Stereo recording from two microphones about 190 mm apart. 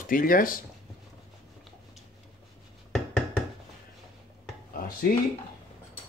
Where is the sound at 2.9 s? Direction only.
Centre (ahead or behind).